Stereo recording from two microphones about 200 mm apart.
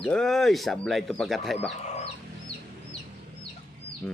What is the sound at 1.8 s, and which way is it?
Chicken, 30° left (ahead or behind).